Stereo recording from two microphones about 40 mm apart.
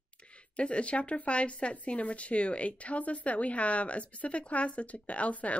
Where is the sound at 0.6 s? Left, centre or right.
Left.